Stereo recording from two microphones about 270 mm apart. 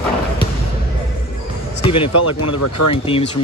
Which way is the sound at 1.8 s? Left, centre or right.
Centre.